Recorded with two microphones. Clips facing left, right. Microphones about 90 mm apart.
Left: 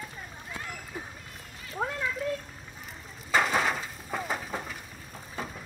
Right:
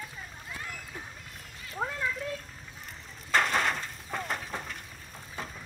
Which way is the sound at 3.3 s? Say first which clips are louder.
Left 1 dB; 5° left (ahead or behind).